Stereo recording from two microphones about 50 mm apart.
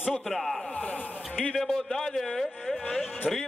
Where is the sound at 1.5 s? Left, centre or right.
Centre.